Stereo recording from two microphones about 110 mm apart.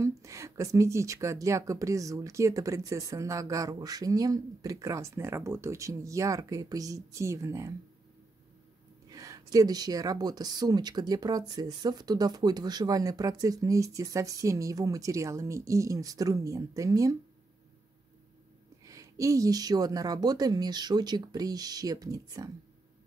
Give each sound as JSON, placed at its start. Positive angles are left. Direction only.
{"t": 0.2, "sound": "speech", "side_deg": -25}
{"t": 9.1, "sound": "speech", "side_deg": -30}
{"t": 18.9, "sound": "speech", "side_deg": -30}